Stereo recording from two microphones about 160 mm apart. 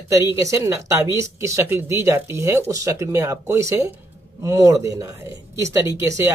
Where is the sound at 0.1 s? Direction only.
20° right (ahead or behind).